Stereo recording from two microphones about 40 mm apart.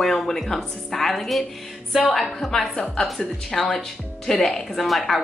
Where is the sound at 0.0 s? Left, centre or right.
Centre.